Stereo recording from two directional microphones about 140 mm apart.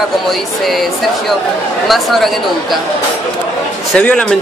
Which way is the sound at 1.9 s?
Centre (ahead or behind).